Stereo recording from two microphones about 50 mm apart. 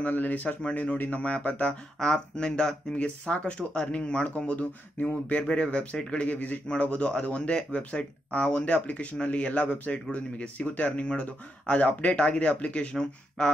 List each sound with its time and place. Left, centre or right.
0.0 s speech: left
1.2 s speech: left